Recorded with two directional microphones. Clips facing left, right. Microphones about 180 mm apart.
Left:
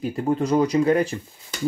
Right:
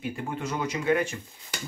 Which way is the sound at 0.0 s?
40° left (ahead or behind).